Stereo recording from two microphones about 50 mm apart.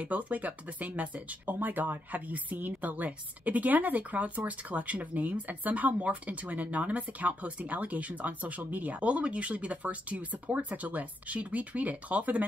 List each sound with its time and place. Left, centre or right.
0.0 s speech: right